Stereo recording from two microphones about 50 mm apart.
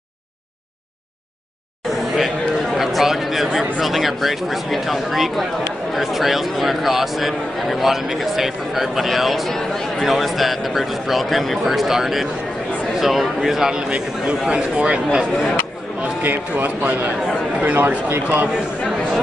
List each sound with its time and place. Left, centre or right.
2.1 s a sound: centre
3.8 s a man's voice: centre; by 15.2 s right
15.3 s speech: left
16.2 s a man's voice: right